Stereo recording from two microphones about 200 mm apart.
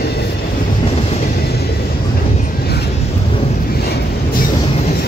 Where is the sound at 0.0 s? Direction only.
55° left (ahead or behind).